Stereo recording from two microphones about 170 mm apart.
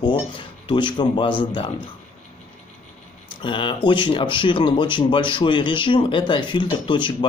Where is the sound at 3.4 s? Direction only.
30° left (ahead or behind).